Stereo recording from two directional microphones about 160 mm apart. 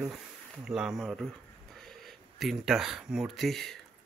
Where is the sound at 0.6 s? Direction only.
5° right (ahead or behind).